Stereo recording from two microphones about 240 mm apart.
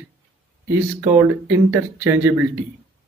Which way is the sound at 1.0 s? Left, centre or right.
Centre.